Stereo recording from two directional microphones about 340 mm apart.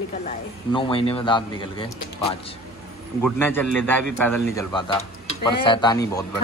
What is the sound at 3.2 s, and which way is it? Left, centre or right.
A man's voice, centre.